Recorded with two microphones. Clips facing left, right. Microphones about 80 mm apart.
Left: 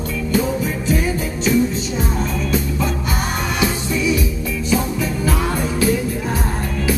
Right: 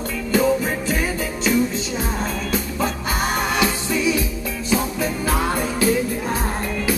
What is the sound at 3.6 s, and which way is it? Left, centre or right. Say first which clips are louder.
Music: left 1 dB; right.